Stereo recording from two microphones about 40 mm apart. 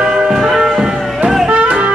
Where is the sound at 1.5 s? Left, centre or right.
Right.